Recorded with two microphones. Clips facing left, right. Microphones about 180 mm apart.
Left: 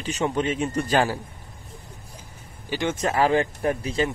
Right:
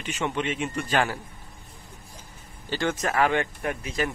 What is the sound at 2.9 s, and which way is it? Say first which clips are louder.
A man's voice: left 4 dB; 30° left (ahead or behind).